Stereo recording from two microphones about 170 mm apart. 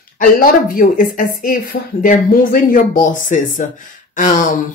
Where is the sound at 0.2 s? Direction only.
55° left (ahead or behind).